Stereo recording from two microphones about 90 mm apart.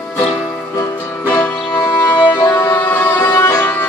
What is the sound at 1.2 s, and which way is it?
Music, 20° left (ahead or behind).